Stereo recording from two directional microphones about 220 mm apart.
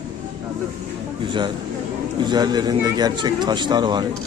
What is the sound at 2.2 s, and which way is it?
Speech, 20° right (ahead or behind).